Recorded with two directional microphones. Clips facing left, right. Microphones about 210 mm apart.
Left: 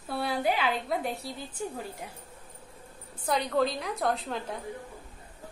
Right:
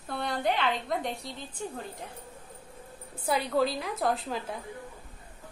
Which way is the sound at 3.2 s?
5° right (ahead or behind).